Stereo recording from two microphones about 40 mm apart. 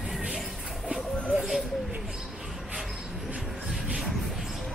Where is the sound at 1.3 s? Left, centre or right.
Centre.